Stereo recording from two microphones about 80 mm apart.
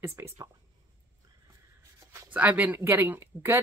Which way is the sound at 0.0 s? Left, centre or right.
Right.